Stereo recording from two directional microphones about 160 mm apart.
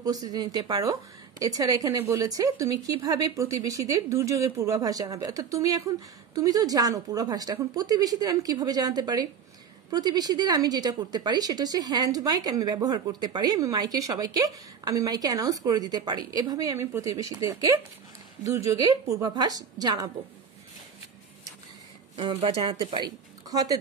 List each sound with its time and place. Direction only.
0.0 s a woman's voice: 25° right (ahead or behind)
22.1 s speech: 30° right (ahead or behind)